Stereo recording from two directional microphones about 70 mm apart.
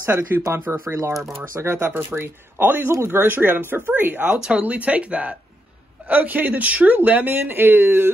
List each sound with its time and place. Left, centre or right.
0.5 s speech: right
1.5 s speech: right
4.4 s speech: centre